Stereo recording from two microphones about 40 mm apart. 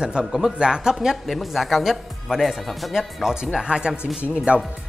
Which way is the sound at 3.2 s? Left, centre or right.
Centre.